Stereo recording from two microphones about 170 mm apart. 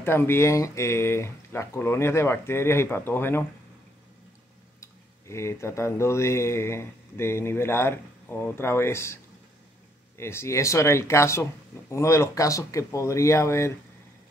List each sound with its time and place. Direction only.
0.0 s speech: 15° left (ahead or behind)
5.3 s speech: 15° left (ahead or behind)